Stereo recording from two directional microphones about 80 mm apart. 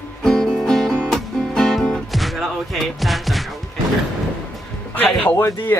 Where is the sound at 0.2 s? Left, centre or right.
Centre.